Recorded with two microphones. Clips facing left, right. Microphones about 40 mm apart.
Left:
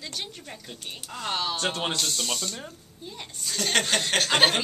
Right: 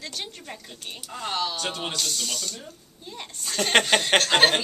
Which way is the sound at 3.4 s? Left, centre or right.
Right.